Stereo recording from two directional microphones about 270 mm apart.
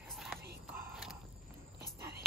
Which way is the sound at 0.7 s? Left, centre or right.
Centre.